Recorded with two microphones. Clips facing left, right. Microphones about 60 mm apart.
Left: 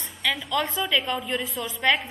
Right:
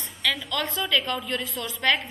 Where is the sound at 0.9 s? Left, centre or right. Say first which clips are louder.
Right 1 dB; centre.